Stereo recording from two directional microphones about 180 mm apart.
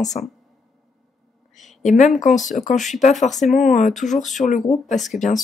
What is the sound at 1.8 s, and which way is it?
Speech, 40° left (ahead or behind).